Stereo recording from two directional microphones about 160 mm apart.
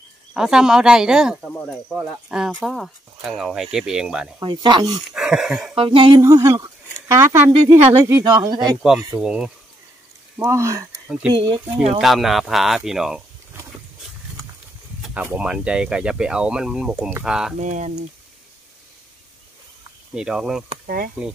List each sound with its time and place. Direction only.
0.3 s speech: 5° right (ahead or behind)
4.4 s speech: 30° right (ahead or behind)
5.1 s speech: 5° right (ahead or behind)
5.8 s speech: 30° right (ahead or behind)
6.2 s speech: 20° right (ahead or behind)
8.3 s speech: 25° right (ahead or behind)
9.1 s speech: 5° right (ahead or behind)
10.3 s speech: 15° right (ahead or behind)
12.0 s speech: centre (ahead or behind)
15.0 s a sound: centre (ahead or behind)
15.2 s speech: 5° right (ahead or behind)
17.6 s speech: 50° right (ahead or behind)
20.2 s speech: 5° right (ahead or behind)
20.8 s speech: 65° right (ahead or behind)